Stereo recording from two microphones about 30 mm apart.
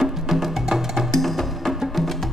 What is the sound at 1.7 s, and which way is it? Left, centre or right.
Music, centre.